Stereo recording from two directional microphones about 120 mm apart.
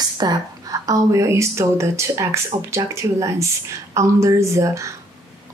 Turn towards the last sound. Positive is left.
turn(degrees=-25)  # may be behind; listen again after turning